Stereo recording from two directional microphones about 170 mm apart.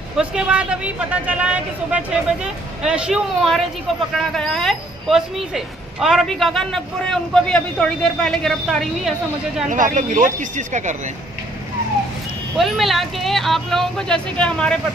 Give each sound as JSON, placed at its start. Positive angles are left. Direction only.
{"t": 0.2, "sound": "a man's voice", "side_deg": -5}
{"t": 9.7, "sound": "speech", "side_deg": -50}
{"t": 12.5, "sound": "speech", "side_deg": 0}